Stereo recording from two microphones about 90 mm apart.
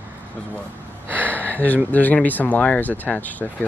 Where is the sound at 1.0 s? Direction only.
20° right (ahead or behind).